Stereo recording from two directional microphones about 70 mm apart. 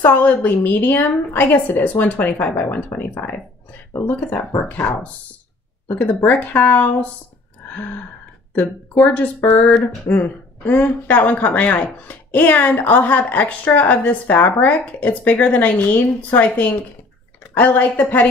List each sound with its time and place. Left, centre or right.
0.0 s a woman's voice: left
4.6 s a woman's voice: left
7.7 s gasp: left
8.5 s a woman's voice: left